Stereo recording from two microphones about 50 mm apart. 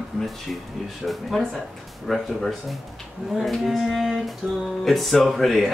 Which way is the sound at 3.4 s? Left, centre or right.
Centre.